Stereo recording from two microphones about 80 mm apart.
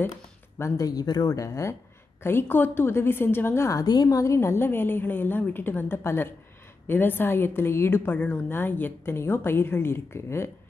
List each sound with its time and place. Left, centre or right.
0.6 s speech: left
2.2 s a woman's voice: left
3.8 s a woman's voice: left
4.2 s a woman's voice: left